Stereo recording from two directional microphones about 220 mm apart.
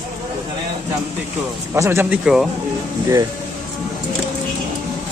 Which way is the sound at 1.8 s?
10° right (ahead or behind).